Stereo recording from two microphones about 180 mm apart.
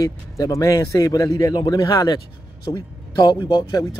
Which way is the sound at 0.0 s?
20° left (ahead or behind).